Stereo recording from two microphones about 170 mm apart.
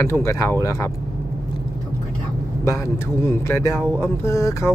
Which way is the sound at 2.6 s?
15° left (ahead or behind).